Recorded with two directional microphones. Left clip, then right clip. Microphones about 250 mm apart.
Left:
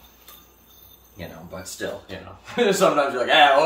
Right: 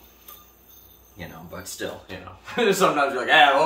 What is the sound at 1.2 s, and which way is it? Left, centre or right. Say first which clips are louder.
Speech: left 2 dB; centre.